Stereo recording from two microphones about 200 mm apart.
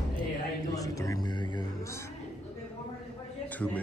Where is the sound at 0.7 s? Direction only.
15° left (ahead or behind).